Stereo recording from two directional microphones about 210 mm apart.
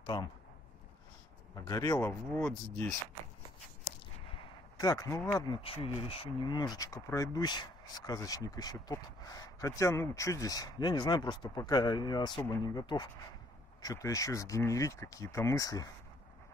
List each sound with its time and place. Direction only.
0.0 s speech: 20° left (ahead or behind)
1.5 s speech: 15° left (ahead or behind)
4.4 s speech: 20° left (ahead or behind)
5.6 s speech: 25° left (ahead or behind)